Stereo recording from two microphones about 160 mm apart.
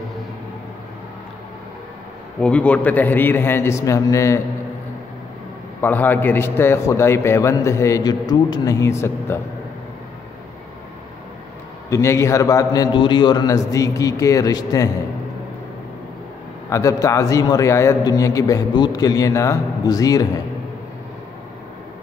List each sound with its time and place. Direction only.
2.4 s a man's voice: 10° left (ahead or behind)
5.8 s a man's voice: 10° left (ahead or behind)
11.9 s a man's voice: 15° left (ahead or behind)
16.6 s a man's voice: 20° left (ahead or behind)